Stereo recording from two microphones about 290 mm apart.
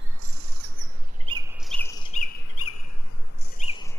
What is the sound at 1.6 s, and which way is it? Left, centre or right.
Chirp, centre.